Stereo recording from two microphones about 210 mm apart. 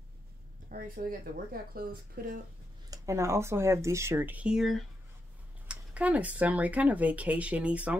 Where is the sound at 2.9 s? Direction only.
15° right (ahead or behind).